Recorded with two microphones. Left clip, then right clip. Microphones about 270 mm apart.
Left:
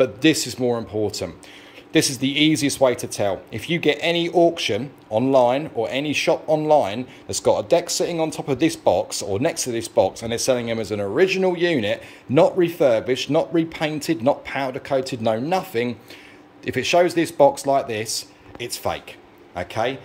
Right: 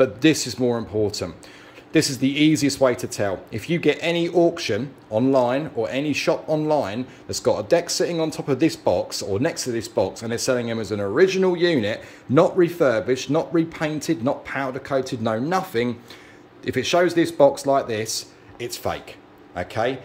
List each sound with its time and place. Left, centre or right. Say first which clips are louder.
0.0 s speech: even; centre